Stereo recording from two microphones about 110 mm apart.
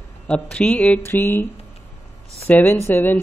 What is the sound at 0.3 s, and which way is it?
Speech, 10° left (ahead or behind).